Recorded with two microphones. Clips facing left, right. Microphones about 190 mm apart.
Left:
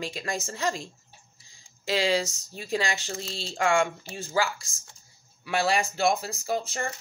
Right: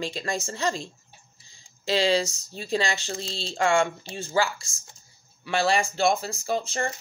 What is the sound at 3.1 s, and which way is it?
Speech, 30° right (ahead or behind).